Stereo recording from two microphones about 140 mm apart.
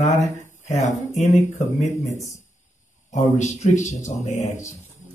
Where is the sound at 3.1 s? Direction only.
60° left (ahead or behind).